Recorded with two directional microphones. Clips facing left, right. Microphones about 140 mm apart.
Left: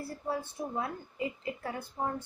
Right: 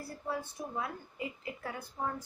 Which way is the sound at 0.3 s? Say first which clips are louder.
Left 3 dB; 30° left (ahead or behind).